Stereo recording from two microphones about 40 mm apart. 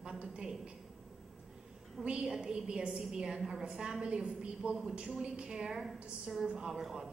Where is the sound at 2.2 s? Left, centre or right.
Centre.